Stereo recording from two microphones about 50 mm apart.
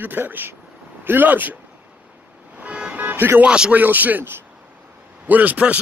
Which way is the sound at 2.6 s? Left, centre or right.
Right.